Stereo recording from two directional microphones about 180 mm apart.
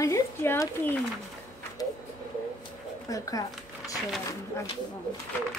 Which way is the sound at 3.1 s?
20° left (ahead or behind).